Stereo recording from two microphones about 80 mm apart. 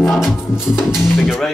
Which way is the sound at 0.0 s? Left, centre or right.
Centre.